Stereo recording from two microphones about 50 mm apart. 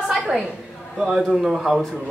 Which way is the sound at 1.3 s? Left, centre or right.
Centre.